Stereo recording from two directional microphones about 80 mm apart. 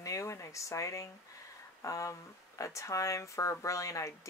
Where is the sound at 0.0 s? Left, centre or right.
Left.